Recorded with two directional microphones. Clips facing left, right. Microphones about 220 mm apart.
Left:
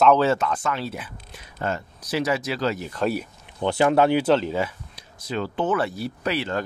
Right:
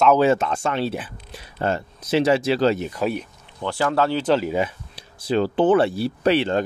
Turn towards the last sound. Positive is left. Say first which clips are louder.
# right 7 dB
turn(degrees=-30)  # may be behind; listen again after turning